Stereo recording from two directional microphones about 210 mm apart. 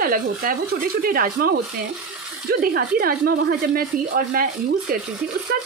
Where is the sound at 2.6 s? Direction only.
45° right (ahead or behind).